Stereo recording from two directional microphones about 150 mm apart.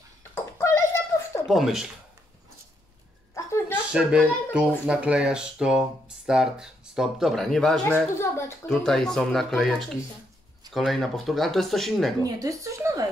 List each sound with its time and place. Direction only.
0.3 s a sound: 20° left (ahead or behind)
1.5 s speech: centre (ahead or behind)
3.3 s a sound: 20° left (ahead or behind)
3.9 s speech: 5° right (ahead or behind)
7.8 s a child's voice: 15° left (ahead or behind)
8.6 s speech: 5° left (ahead or behind)
12.2 s speech: 20° right (ahead or behind)